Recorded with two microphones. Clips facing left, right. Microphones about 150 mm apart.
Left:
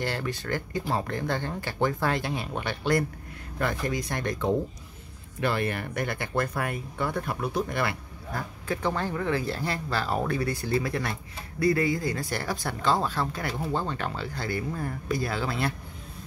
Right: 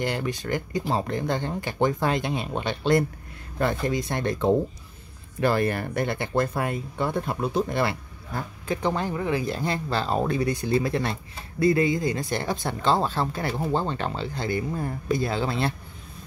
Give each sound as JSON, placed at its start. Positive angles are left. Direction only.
{"t": 0.0, "sound": "speech", "side_deg": -15}
{"t": 5.4, "sound": "speech", "side_deg": -40}